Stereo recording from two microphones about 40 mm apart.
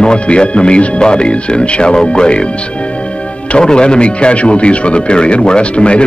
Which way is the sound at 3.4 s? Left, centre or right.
Left.